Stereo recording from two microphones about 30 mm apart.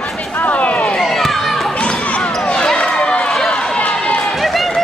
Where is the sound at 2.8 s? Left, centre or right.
Left.